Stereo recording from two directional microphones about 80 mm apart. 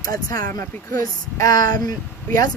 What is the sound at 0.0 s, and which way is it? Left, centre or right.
Speech, left.